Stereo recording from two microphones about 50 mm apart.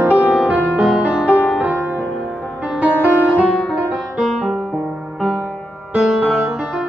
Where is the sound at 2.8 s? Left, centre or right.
Right.